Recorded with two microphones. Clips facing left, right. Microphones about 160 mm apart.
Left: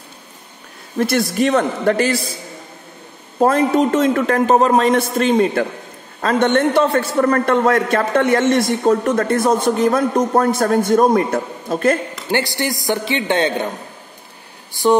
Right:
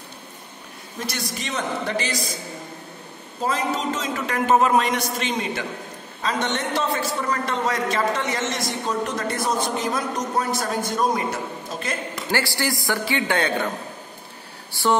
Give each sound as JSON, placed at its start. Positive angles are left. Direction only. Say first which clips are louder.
{"t": 0.9, "sound": "a man's voice", "louder": "left 14 dB", "side_deg": 55}
{"t": 3.3, "sound": "a man's voice", "louder": "left 11 dB", "side_deg": 55}
{"t": 4.5, "sound": "a man's voice", "louder": "left 3 dB", "side_deg": 40}
{"t": 12.3, "sound": "a man's voice", "louder": "left 5 dB", "side_deg": 20}
{"t": 14.7, "sound": "a sound", "louder": "left 7 dB", "side_deg": 15}